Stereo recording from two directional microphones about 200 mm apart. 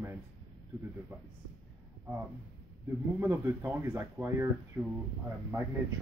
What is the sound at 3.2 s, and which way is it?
Speech, 10° right (ahead or behind).